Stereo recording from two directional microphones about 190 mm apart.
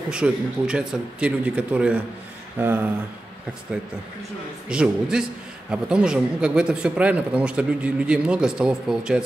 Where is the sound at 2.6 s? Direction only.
10° right (ahead or behind).